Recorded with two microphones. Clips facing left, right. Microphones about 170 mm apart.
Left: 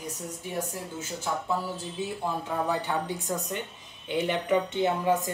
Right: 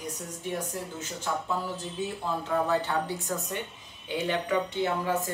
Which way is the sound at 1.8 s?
15° left (ahead or behind).